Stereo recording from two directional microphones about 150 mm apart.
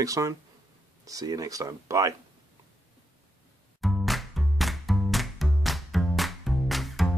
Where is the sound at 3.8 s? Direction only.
Centre (ahead or behind).